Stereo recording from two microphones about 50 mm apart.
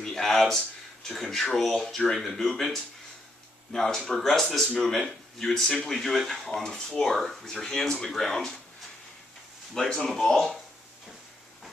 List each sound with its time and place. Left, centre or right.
0.0 s speech: centre
9.8 s speech: centre